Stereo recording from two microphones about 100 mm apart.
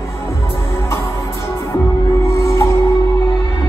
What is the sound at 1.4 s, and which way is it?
Music, 30° left (ahead or behind).